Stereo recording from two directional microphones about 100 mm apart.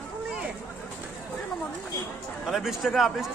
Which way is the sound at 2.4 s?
5° right (ahead or behind).